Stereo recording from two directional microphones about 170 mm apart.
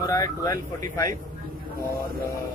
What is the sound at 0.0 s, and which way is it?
Speech, 20° left (ahead or behind).